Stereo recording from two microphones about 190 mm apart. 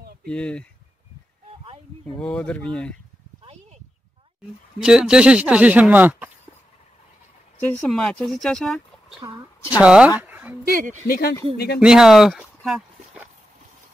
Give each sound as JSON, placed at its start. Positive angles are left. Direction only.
{"t": 0.2, "sound": "speech", "side_deg": 5}
{"t": 1.5, "sound": "a sound", "side_deg": -30}
{"t": 2.1, "sound": "speech", "side_deg": 5}
{"t": 4.8, "sound": "speech", "side_deg": -5}
{"t": 7.6, "sound": "speech", "side_deg": 5}
{"t": 10.6, "sound": "speech", "side_deg": -50}
{"t": 11.1, "sound": "speech", "side_deg": 55}
{"t": 11.8, "sound": "speech", "side_deg": -5}